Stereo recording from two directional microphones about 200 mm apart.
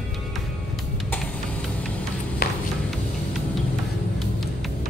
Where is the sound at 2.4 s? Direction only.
50° left (ahead or behind).